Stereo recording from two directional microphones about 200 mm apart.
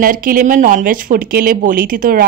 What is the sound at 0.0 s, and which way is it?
Speech, 45° right (ahead or behind).